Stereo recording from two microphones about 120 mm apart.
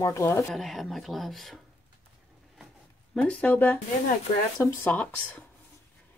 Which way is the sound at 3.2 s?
10° left (ahead or behind).